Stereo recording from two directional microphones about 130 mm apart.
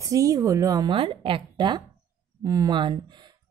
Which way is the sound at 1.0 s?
40° right (ahead or behind).